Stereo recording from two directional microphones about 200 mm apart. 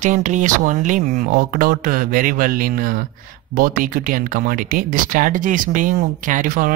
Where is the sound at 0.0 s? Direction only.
40° right (ahead or behind).